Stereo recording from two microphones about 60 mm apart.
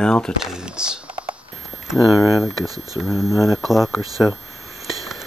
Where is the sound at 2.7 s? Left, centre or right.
Right.